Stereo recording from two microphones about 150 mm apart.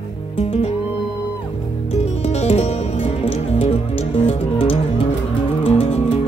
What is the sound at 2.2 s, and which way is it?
Music, 45° left (ahead or behind).